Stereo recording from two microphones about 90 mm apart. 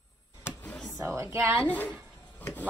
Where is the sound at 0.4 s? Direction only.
25° left (ahead or behind).